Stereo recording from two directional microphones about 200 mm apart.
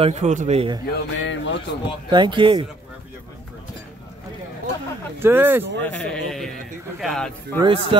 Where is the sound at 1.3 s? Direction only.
65° left (ahead or behind).